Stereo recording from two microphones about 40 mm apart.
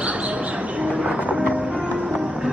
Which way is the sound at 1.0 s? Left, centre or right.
Right.